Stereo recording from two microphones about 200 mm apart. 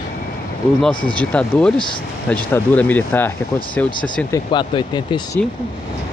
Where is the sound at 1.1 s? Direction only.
5° left (ahead or behind).